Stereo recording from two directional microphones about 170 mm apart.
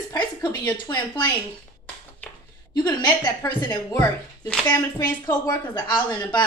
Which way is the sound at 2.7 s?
25° left (ahead or behind).